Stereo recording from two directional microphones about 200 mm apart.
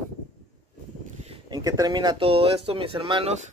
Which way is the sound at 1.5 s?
20° right (ahead or behind).